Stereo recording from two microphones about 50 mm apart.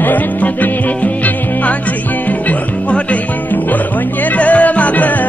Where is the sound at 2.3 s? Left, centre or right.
Left.